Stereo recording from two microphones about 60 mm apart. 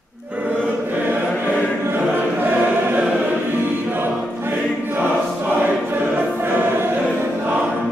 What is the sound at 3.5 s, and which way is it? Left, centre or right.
Choir, right.